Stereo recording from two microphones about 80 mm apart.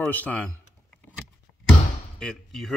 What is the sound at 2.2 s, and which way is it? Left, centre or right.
Speech, centre.